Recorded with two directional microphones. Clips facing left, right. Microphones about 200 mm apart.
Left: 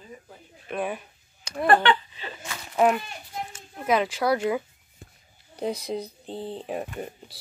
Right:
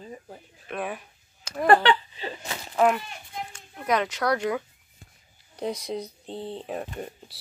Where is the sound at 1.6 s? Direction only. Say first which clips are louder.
Right 1 dB; 35° right (ahead or behind).